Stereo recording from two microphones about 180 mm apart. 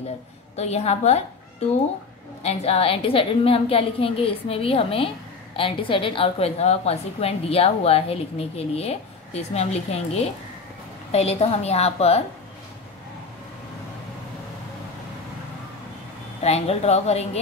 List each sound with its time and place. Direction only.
0.6 s a woman's voice: 35° left (ahead or behind)
2.4 s a woman's voice: 35° left (ahead or behind)
16.4 s a woman's voice: 35° left (ahead or behind)